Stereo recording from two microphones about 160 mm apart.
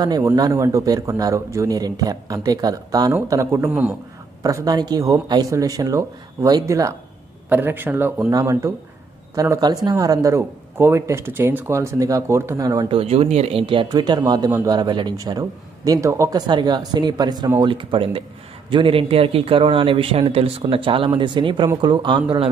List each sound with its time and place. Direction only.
0.0 s a man's voice: 25° right (ahead or behind)
12.8 s a man's voice: 35° right (ahead or behind)